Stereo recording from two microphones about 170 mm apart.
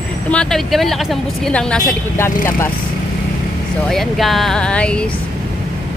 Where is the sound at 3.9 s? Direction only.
Centre (ahead or behind).